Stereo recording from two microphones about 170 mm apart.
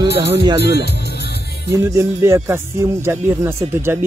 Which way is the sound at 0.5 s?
75° left (ahead or behind).